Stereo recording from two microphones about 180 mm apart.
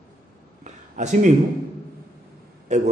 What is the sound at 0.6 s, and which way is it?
Speech, 40° right (ahead or behind).